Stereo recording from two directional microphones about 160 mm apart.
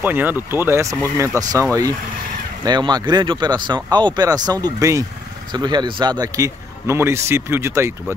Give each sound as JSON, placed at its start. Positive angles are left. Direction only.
{"t": 0.0, "sound": "speech", "side_deg": -10}